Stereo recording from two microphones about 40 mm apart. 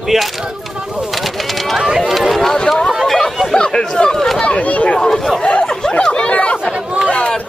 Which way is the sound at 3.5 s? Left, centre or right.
Centre.